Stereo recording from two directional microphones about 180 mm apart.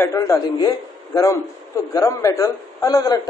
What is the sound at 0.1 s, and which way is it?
A man's voice, 20° left (ahead or behind).